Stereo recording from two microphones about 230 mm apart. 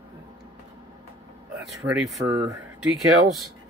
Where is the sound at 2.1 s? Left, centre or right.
Centre.